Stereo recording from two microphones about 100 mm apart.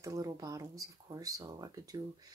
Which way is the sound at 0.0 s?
35° right (ahead or behind).